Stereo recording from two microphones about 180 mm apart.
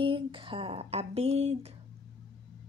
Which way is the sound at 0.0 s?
30° right (ahead or behind).